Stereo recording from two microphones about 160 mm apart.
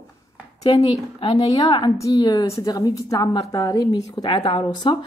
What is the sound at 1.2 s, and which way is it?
A woman's voice, 35° left (ahead or behind).